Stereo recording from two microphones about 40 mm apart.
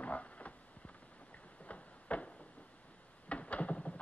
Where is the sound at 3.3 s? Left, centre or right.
Left.